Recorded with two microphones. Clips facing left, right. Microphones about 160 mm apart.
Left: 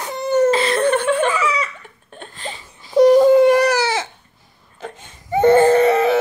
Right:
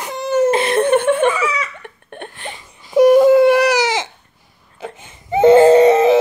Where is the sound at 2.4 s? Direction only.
15° right (ahead or behind).